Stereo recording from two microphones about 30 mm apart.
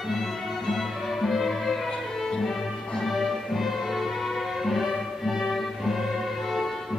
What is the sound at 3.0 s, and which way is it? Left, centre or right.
Music, centre.